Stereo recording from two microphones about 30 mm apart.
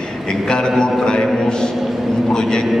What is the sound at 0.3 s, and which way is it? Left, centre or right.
A man's voice, left.